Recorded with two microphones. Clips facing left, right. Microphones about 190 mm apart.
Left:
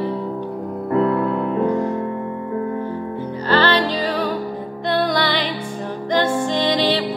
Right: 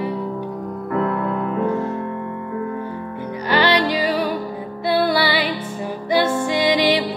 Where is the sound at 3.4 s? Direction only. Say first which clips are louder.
Even; 15° right (ahead or behind).